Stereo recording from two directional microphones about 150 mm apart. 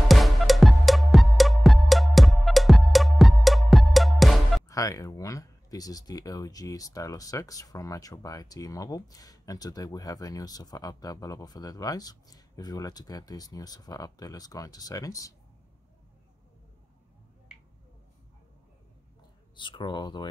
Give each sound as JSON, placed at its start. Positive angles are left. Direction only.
{"t": 0.1, "sound": "music", "side_deg": 0}
{"t": 4.6, "sound": "speech", "side_deg": 20}
{"t": 19.5, "sound": "speech", "side_deg": 30}